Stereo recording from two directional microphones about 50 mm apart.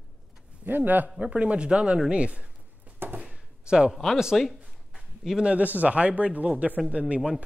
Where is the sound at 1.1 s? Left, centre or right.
Right.